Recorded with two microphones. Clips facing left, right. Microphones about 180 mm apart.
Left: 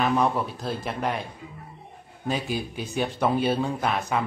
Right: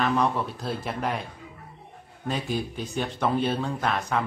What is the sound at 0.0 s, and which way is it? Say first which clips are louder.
Speech: left 1 dB; 5° left (ahead or behind).